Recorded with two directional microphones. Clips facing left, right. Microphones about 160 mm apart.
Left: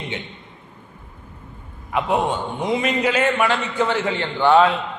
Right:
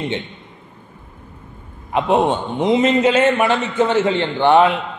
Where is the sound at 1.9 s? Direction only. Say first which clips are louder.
Right 5 dB; 25° right (ahead or behind).